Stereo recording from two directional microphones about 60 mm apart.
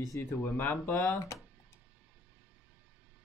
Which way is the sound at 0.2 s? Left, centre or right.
Left.